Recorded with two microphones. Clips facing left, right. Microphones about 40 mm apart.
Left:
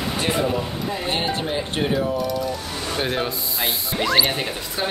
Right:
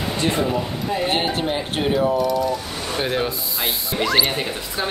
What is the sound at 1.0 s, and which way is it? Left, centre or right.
Speech, centre.